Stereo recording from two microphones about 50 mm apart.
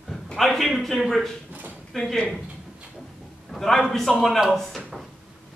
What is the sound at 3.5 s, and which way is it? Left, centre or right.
A man's voice, centre.